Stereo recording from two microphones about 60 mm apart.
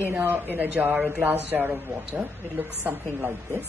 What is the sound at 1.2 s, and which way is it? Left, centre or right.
Speech, right.